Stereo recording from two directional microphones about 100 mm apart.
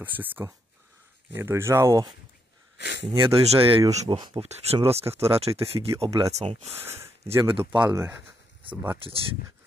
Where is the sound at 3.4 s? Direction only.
65° right (ahead or behind).